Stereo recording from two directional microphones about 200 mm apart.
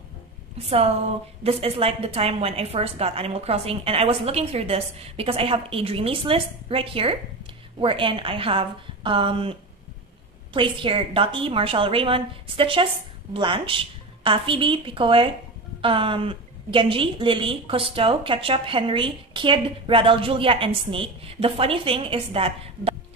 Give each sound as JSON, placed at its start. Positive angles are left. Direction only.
{"t": 0.6, "sound": "a woman's voice", "side_deg": -30}